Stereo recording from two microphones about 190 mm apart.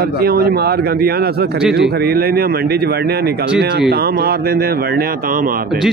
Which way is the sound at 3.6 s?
60° right (ahead or behind).